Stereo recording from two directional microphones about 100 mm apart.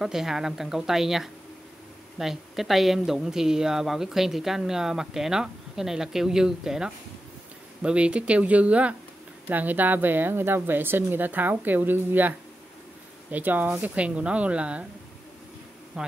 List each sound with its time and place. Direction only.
0.0 s speech: 5° right (ahead or behind)
16.0 s speech: 5° right (ahead or behind)